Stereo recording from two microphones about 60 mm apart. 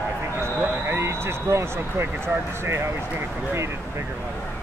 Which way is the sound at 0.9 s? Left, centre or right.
Right.